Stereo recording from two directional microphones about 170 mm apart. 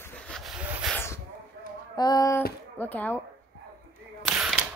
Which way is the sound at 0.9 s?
15° left (ahead or behind).